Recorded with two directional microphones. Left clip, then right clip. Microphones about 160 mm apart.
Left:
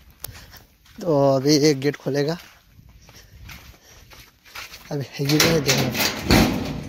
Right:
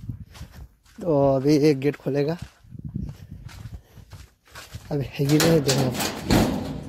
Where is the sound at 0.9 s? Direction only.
15° right (ahead or behind).